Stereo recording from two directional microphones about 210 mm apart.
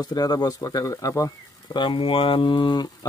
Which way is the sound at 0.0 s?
20° left (ahead or behind).